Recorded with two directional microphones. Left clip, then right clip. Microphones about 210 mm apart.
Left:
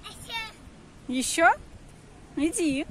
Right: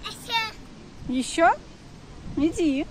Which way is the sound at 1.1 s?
25° left (ahead or behind).